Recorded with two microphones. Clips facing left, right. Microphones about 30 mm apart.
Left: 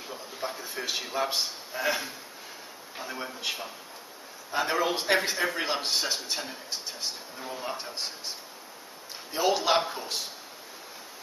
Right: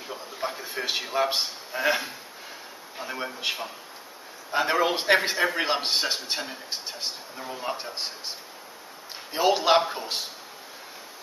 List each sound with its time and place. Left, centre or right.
0.1 s a sound: centre
3.0 s a man's voice: centre
7.3 s speech: centre
9.3 s a man's voice: centre